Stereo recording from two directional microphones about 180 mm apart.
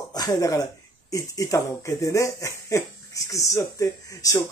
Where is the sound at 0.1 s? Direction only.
20° left (ahead or behind).